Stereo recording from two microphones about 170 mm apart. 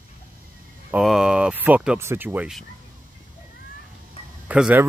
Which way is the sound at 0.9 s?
5° right (ahead or behind).